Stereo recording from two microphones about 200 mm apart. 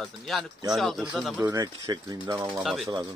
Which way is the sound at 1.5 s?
20° right (ahead or behind).